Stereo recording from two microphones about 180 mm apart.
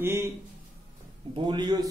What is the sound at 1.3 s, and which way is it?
Speech, 25° right (ahead or behind).